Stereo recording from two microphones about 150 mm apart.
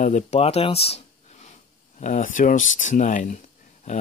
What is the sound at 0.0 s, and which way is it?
Speech, 50° left (ahead or behind).